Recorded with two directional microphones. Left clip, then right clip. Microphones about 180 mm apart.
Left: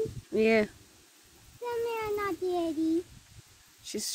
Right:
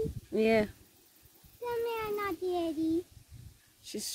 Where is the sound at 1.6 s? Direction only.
30° left (ahead or behind).